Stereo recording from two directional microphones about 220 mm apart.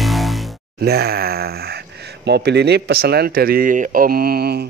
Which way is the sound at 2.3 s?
50° right (ahead or behind).